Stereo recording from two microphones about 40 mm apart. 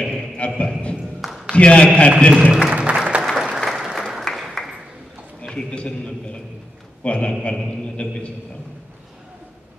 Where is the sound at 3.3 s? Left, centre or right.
Centre.